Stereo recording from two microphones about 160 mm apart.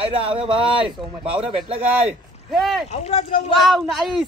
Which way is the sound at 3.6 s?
Centre (ahead or behind).